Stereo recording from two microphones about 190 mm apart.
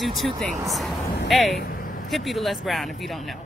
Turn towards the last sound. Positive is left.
turn(degrees=0)  # may be behind; listen again after turning